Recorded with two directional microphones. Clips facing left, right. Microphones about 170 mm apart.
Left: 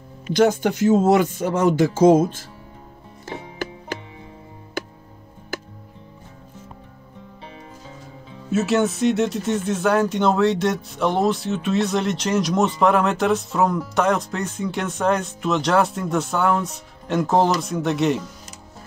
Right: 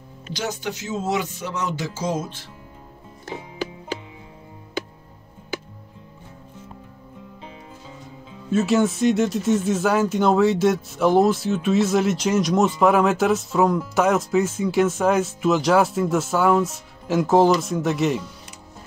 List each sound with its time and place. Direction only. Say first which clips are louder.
0.3 s speech: left 11 dB; 55° left (ahead or behind)
8.5 s speech: even; 5° left (ahead or behind)